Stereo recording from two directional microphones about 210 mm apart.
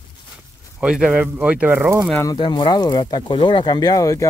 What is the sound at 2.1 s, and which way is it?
Speech, 20° left (ahead or behind).